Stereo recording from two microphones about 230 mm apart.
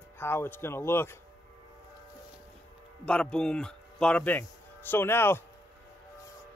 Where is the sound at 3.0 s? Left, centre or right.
Centre.